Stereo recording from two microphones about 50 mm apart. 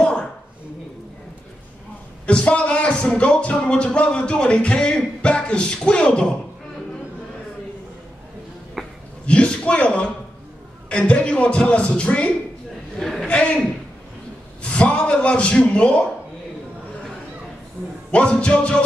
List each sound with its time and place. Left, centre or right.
2.2 s music: left
8.8 s a sound: centre
9.2 s a man's voice: left
10.9 s music: left
12.9 s a man's voice: centre
14.6 s a sound: left
15.0 s music: left
18.1 s music: left